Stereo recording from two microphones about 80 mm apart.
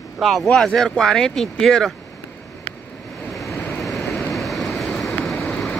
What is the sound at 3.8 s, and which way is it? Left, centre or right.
Vehicle, centre.